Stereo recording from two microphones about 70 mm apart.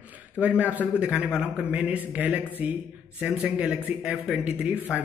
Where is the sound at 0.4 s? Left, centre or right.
Right.